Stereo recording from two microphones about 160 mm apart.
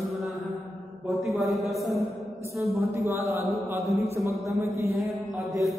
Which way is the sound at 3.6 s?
15° right (ahead or behind).